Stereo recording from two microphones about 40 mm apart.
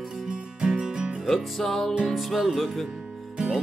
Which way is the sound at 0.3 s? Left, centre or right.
Right.